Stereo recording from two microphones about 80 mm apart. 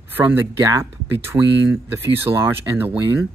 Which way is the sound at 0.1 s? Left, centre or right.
Right.